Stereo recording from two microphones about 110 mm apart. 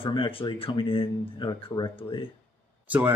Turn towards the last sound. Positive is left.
turn(degrees=-15)  # may be behind; listen again after turning